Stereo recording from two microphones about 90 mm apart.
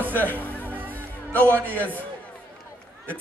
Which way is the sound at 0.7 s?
20° right (ahead or behind).